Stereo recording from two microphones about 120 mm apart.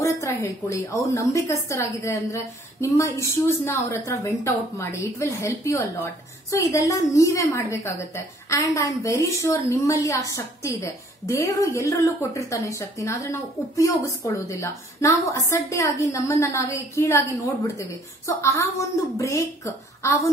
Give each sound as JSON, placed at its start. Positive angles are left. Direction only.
{"t": 0.0, "sound": "a woman's voice", "side_deg": 25}